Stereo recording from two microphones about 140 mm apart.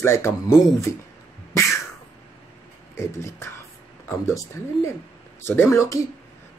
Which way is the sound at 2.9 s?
20° left (ahead or behind).